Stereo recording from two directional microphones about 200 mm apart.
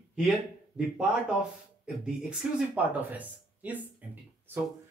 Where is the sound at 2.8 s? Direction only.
10° right (ahead or behind).